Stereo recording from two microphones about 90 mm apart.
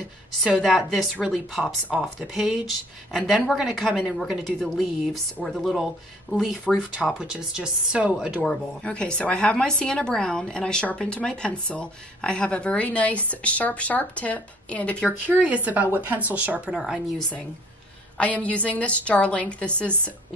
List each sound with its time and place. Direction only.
0.6 s speech: centre (ahead or behind)
7.1 s speech: 10° right (ahead or behind)
8.5 s a woman's voice: 10° left (ahead or behind)
15.2 s speech: 15° right (ahead or behind)
18.1 s a woman's voice: 15° left (ahead or behind)